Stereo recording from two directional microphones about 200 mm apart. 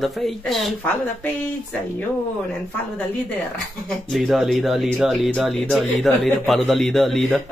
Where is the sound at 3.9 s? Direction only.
Centre (ahead or behind).